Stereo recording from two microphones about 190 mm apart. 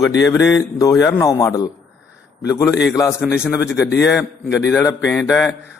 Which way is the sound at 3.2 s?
5° right (ahead or behind).